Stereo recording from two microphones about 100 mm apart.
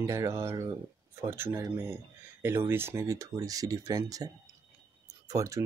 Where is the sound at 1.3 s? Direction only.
20° right (ahead or behind).